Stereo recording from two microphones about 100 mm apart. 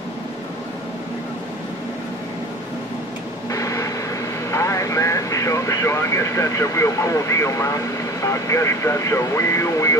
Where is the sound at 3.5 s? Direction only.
30° left (ahead or behind).